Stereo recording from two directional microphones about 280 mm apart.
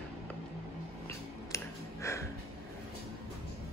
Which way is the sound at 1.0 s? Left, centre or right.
Centre.